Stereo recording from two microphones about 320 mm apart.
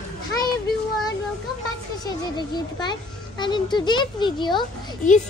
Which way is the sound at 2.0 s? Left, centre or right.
Centre.